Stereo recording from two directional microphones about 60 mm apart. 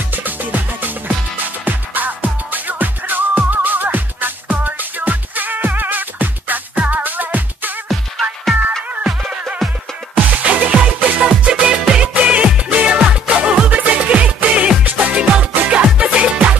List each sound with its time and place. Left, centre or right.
0.1 s music: right
10.1 s music: right
12.1 s music: right